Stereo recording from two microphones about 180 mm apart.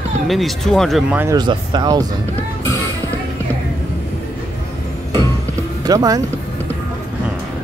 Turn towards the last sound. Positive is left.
turn(degrees=-20)  # may be behind; listen again after turning